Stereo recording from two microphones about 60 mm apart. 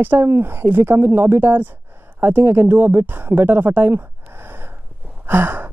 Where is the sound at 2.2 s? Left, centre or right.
Right.